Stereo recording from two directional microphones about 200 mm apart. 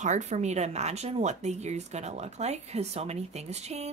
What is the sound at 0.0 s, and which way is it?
Speech, 35° right (ahead or behind).